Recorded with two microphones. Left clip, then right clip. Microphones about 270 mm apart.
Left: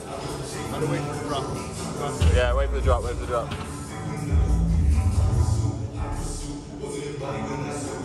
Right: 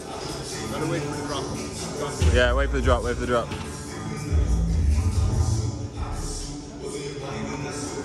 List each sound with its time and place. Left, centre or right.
2.3 s speech: right